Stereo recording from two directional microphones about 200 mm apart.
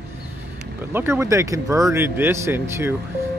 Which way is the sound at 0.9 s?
10° right (ahead or behind).